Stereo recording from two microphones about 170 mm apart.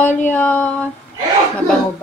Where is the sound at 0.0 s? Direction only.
10° left (ahead or behind).